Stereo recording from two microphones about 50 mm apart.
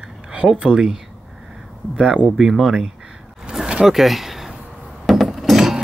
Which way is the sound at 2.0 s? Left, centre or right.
Right.